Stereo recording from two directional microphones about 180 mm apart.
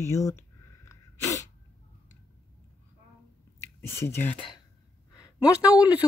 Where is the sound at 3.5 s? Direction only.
15° left (ahead or behind).